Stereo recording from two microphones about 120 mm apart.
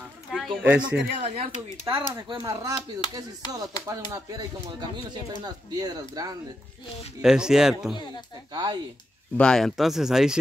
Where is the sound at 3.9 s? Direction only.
25° right (ahead or behind).